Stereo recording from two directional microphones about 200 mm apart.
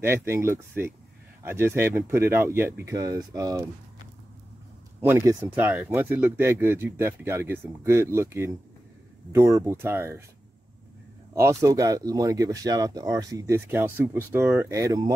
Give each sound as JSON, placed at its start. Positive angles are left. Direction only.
{"t": 0.0, "sound": "speech", "side_deg": -10}
{"t": 5.0, "sound": "speech", "side_deg": -15}
{"t": 11.3, "sound": "speech", "side_deg": -15}